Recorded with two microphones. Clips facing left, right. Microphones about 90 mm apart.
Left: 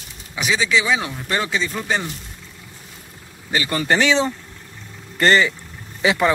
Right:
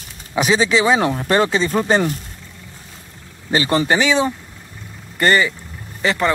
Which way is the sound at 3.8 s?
10° right (ahead or behind).